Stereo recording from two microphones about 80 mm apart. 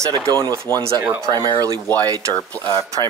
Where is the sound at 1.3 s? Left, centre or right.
Right.